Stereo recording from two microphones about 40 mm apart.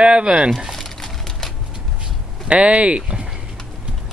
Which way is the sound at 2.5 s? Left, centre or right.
Right.